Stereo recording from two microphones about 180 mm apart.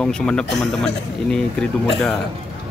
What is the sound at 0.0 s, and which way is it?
Speech, 5° left (ahead or behind).